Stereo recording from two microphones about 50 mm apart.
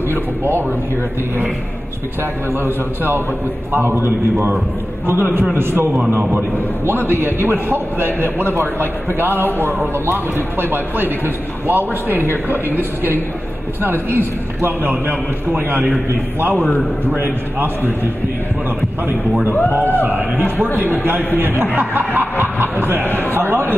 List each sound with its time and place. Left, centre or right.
0.1 s speech: right
2.6 s a man's voice: right
19.8 s speech: left
20.1 s a man's voice: right
20.6 s a man's voice: left
20.9 s a man's voice: right
21.7 s snicker: right
22.4 s a sound: right
23.3 s a man's voice: right